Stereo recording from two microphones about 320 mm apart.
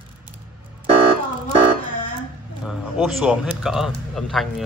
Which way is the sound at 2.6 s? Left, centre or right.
Centre.